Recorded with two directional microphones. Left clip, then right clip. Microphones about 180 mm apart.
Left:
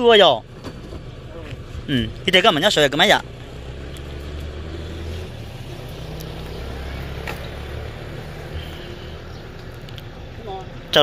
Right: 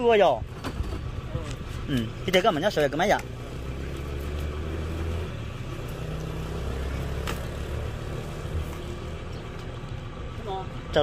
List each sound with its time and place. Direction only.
0.0 s speech: 40° left (ahead or behind)
1.9 s speech: 20° left (ahead or behind)